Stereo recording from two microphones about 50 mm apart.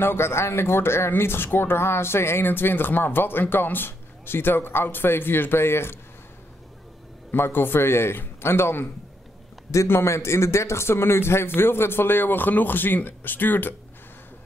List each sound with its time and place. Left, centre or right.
0.0 s speech: left
2.4 s a man's voice: left
7.2 s a man's voice: left
10.0 s a man's voice: left